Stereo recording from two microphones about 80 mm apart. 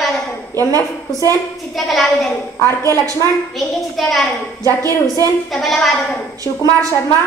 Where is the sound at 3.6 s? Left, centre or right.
Centre.